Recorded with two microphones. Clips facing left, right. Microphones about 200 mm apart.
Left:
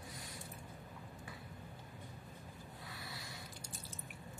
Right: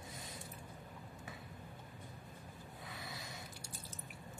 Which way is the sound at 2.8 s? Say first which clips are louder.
Right 2 dB; 20° right (ahead or behind).